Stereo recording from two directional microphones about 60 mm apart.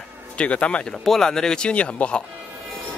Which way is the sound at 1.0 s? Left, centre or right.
Centre.